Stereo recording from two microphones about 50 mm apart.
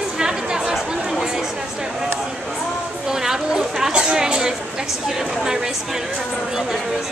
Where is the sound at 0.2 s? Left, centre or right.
Centre.